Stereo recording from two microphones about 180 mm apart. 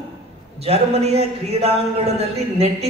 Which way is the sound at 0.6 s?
35° right (ahead or behind).